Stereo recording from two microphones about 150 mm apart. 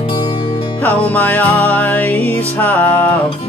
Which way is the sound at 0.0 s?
30° left (ahead or behind).